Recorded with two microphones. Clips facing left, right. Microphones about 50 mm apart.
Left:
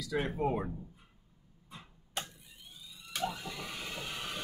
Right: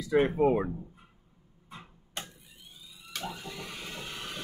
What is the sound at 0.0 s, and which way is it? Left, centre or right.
Speech, right.